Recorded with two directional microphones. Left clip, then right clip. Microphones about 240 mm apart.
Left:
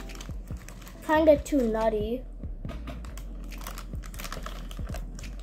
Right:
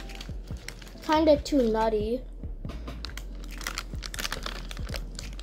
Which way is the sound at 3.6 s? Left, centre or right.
Centre.